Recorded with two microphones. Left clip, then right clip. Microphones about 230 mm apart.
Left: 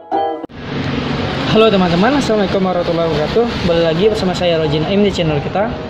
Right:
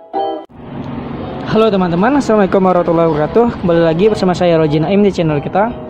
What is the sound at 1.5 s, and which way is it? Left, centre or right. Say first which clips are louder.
Speech: left 1 dB; centre.